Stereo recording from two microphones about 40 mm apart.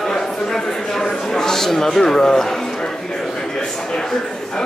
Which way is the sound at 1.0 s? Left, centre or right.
Centre.